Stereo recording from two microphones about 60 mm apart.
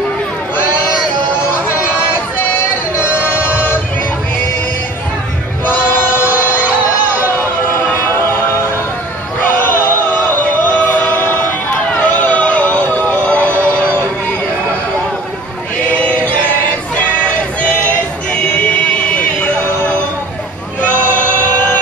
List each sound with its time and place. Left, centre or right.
1.7 s a sound: left
3.3 s music: left
5.7 s choir: left
7.8 s music: left
15.9 s choir: left
16.9 s a sound: left